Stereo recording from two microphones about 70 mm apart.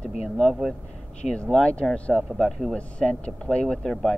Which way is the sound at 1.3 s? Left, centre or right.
Centre.